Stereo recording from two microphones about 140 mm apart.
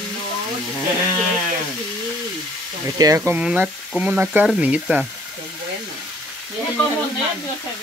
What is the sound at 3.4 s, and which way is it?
Frying, 10° right (ahead or behind).